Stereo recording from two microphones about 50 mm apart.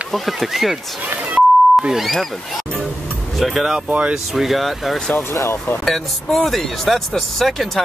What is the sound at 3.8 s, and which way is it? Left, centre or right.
Speech, right.